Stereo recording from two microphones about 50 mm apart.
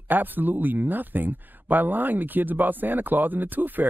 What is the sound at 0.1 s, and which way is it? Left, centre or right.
Speech, right.